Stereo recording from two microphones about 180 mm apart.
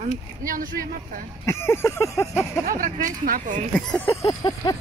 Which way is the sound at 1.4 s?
15° left (ahead or behind).